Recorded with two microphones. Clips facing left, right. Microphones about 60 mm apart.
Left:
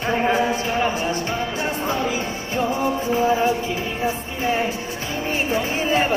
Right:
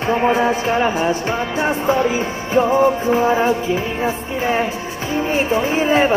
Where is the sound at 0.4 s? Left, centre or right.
Right.